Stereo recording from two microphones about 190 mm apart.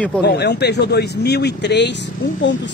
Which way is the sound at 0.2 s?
60° left (ahead or behind).